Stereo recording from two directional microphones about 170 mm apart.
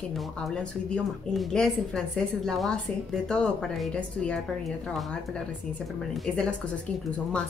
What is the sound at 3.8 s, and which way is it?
Speech, 5° left (ahead or behind).